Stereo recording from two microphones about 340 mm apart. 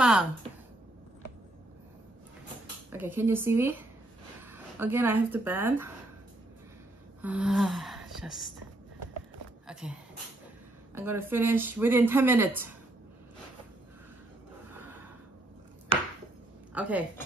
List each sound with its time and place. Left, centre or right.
0.0 s a sound: centre
2.9 s speech: centre
7.2 s speech: centre
9.7 s a sound: centre
11.0 s speech: centre
16.7 s speech: centre